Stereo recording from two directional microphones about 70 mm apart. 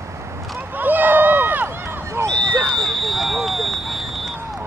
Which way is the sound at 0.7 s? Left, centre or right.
Right.